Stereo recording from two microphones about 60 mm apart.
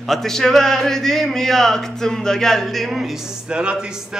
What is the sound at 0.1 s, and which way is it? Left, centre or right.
Speech, centre.